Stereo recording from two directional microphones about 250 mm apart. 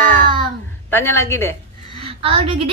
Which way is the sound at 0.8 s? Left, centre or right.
Centre.